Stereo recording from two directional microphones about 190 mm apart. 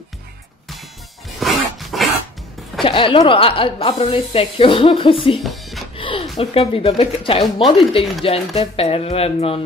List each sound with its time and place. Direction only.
1.4 s dog: centre (ahead or behind)
2.8 s speech: 25° left (ahead or behind)
5.4 s music: centre (ahead or behind)
5.9 s music: 30° left (ahead or behind)
6.3 s speech: 30° left (ahead or behind)